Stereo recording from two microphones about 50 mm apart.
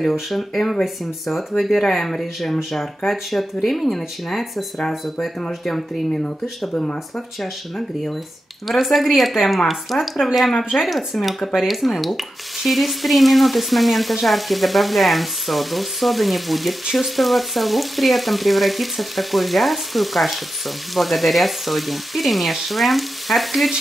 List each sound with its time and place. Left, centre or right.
0.3 s frying: centre
5.4 s speech: centre
8.6 s frying: centre